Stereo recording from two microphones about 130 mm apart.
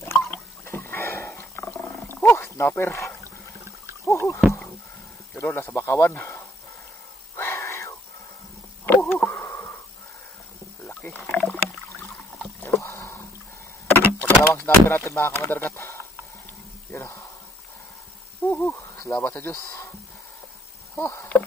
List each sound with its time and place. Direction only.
0.7 s roaring cats: 20° left (ahead or behind)
4.0 s a sound: 25° left (ahead or behind)
5.3 s speech: 15° left (ahead or behind)
7.3 s a sound: 20° left (ahead or behind)
8.8 s wheeze: 15° left (ahead or behind)
10.9 s a sound: 15° left (ahead or behind)
11.3 s rowboat: 10° left (ahead or behind)
12.8 s boat: 20° left (ahead or behind)
13.8 s door: 15° left (ahead or behind)
16.9 s a sound: 20° left (ahead or behind)
18.5 s owl: 15° left (ahead or behind)
19.1 s speech: 15° left (ahead or behind)
20.9 s speech: 20° left (ahead or behind)